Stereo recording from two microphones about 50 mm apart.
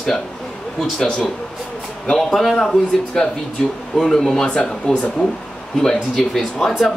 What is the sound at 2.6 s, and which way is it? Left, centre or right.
Speech, centre.